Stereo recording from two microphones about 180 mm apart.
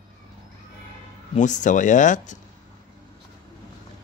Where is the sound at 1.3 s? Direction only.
45° left (ahead or behind).